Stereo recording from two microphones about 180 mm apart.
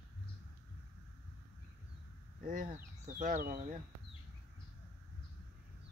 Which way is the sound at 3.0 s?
45° right (ahead or behind).